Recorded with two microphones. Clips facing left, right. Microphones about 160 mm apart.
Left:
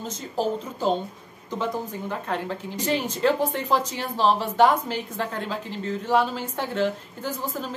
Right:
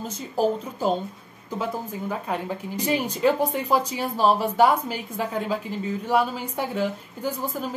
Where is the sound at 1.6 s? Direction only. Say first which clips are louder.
Left 1 dB; 10° right (ahead or behind).